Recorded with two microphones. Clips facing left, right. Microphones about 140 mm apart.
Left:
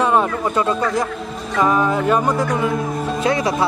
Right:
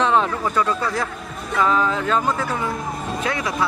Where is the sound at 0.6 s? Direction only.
20° left (ahead or behind).